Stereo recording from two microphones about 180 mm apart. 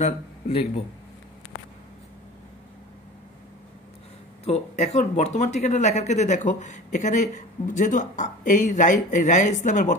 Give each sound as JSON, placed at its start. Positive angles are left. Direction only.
{"t": 0.0, "sound": "speech", "side_deg": 35}
{"t": 4.5, "sound": "speech", "side_deg": 40}